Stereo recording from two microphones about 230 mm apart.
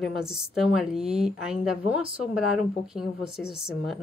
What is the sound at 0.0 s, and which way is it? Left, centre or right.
Speech, centre.